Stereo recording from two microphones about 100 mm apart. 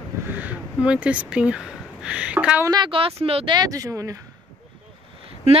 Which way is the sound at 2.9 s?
70° right (ahead or behind).